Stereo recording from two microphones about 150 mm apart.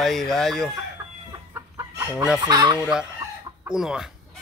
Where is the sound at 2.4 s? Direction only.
30° right (ahead or behind).